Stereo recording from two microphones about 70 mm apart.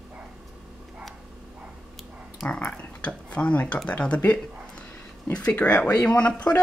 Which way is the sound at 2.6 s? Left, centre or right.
Centre.